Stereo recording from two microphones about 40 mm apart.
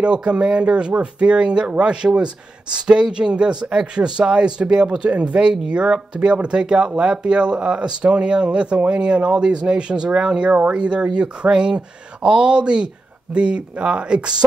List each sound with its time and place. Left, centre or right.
0.0 s speech: right